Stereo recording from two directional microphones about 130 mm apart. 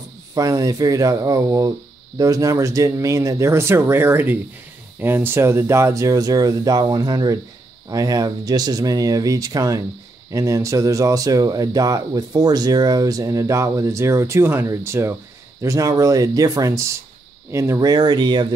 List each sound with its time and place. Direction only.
0.3 s speech: 25° right (ahead or behind)